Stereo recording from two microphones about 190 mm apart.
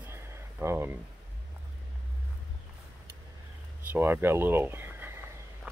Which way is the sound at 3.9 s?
10° right (ahead or behind).